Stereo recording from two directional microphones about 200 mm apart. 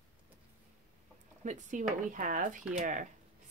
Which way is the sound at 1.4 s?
35° right (ahead or behind).